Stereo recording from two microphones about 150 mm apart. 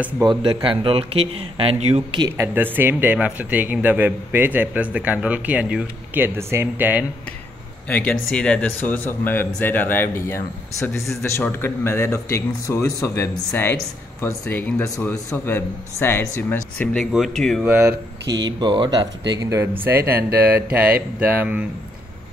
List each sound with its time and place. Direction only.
0.2 s speech: 30° right (ahead or behind)
2.1 s speech: 25° right (ahead or behind)
7.9 s a man's voice: 10° left (ahead or behind)
17.6 s speech: 10° right (ahead or behind)
18.3 s speech: 30° right (ahead or behind); by 21.6 s 10° right (ahead or behind)